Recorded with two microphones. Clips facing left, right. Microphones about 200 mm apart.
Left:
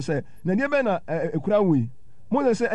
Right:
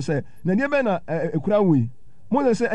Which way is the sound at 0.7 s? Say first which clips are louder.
Right 1 dB; 15° right (ahead or behind).